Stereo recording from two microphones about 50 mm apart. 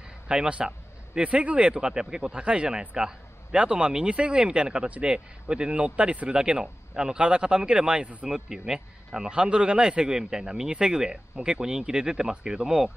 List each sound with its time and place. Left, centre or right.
0.3 s a man's voice: right